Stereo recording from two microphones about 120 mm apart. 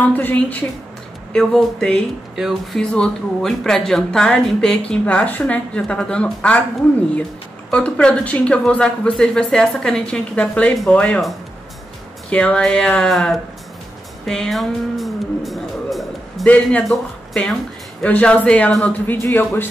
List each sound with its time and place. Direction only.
0.1 s a woman's voice: 15° left (ahead or behind)
1.3 s a woman's voice: centre (ahead or behind)
7.7 s a woman's voice: 10° left (ahead or behind)
12.3 s a woman's voice: 10° left (ahead or behind)
14.2 s music: 5° left (ahead or behind)
16.4 s a woman's voice: 10° left (ahead or behind)